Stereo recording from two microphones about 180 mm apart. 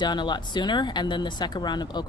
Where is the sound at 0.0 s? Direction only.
25° left (ahead or behind).